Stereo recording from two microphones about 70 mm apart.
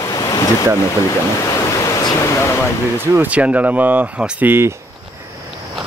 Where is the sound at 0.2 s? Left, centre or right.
Left.